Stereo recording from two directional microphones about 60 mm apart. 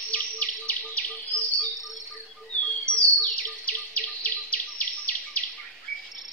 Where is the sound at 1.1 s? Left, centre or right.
Left.